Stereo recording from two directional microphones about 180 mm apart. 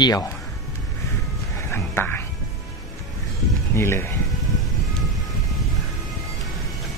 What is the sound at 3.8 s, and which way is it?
Speech, 15° left (ahead or behind).